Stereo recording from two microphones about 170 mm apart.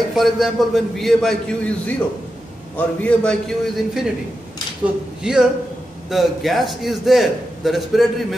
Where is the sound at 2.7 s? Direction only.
5° left (ahead or behind).